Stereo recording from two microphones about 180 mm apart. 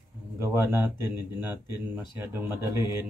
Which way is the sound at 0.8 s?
10° right (ahead or behind).